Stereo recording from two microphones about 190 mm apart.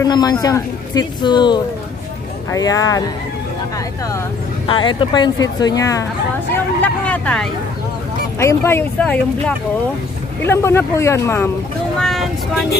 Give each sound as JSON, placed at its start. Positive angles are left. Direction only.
{"t": 0.0, "sound": "speech", "side_deg": 20}
{"t": 4.6, "sound": "speech", "side_deg": 25}
{"t": 6.8, "sound": "speech", "side_deg": 5}
{"t": 10.4, "sound": "speech", "side_deg": 15}
{"t": 12.0, "sound": "speech", "side_deg": 0}